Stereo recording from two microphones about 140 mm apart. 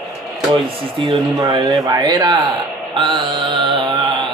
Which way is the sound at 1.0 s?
30° right (ahead or behind).